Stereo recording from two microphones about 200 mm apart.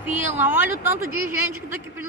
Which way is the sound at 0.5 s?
10° right (ahead or behind).